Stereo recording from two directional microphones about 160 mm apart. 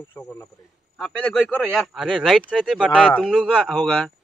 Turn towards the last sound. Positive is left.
turn(degrees=5)  # may be behind; listen again after turning